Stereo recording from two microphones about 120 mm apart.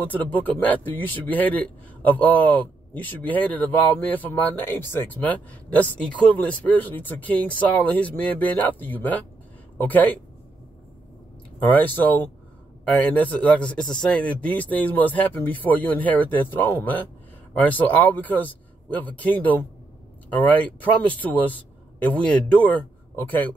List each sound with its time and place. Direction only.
0.0 s a man's voice: 15° left (ahead or behind)
11.6 s a man's voice: 15° left (ahead or behind)